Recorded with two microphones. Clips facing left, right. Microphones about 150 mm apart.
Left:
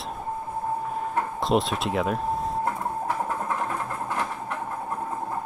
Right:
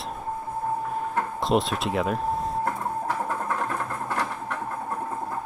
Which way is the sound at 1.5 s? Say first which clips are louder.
Even; centre (ahead or behind).